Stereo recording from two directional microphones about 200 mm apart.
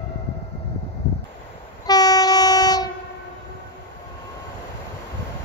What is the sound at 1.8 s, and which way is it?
Train, 20° left (ahead or behind).